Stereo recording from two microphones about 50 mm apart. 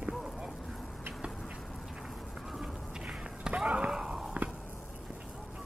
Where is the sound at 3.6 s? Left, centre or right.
Right.